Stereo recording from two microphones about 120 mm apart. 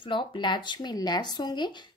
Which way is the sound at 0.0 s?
45° left (ahead or behind).